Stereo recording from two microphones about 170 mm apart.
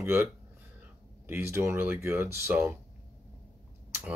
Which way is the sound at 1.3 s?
15° right (ahead or behind).